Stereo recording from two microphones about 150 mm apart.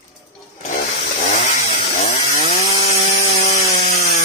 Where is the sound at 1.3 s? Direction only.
50° left (ahead or behind).